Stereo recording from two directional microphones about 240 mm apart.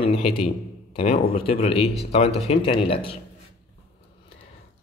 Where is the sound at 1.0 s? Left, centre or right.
Left.